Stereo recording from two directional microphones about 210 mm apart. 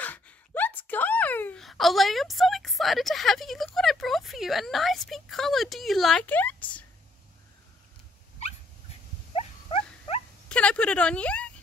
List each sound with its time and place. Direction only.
0.0 s a sound: 10° left (ahead or behind)
9.3 s dog: 30° left (ahead or behind)
10.5 s speech: 5° left (ahead or behind)